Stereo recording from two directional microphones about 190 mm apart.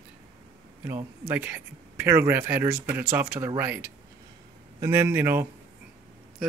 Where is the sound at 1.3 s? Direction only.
10° right (ahead or behind).